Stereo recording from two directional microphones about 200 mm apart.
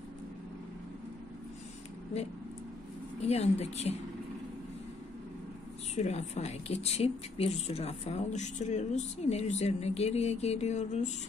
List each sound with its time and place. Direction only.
3.3 s a woman's voice: 30° left (ahead or behind)
5.9 s a woman's voice: 35° left (ahead or behind)